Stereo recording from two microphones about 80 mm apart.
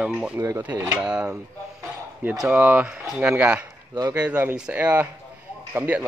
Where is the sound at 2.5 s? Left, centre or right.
Centre.